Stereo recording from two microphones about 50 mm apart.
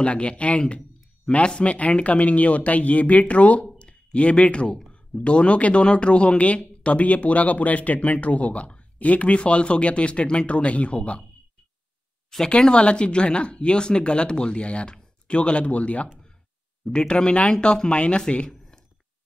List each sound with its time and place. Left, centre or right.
0.0 s speech: left
12.3 s speech: centre
17.1 s speech: left